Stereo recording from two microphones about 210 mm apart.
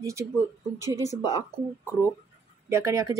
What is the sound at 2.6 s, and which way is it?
Speech, 15° right (ahead or behind).